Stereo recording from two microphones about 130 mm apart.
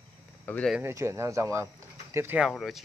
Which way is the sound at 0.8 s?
20° right (ahead or behind).